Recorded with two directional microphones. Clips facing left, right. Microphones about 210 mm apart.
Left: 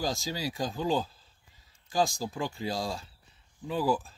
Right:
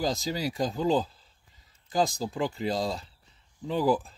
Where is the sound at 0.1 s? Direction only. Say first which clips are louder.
Right 3 dB; centre (ahead or behind).